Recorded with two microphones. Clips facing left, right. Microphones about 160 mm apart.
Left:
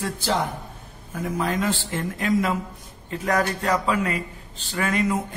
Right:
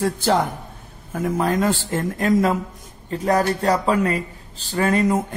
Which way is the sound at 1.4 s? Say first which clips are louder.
Right 4 dB; 45° right (ahead or behind).